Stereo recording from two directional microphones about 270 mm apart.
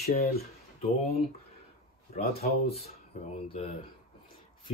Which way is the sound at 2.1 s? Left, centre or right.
Left.